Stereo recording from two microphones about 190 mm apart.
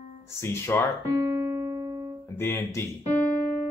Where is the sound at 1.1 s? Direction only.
15° right (ahead or behind).